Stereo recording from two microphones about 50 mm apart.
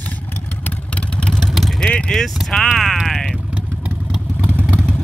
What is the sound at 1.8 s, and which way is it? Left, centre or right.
Speech, centre.